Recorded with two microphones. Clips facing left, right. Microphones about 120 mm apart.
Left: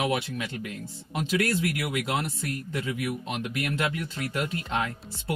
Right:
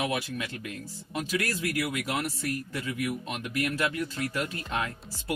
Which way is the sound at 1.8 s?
30° left (ahead or behind).